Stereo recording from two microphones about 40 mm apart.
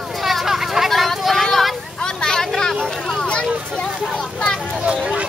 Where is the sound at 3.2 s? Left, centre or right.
Left.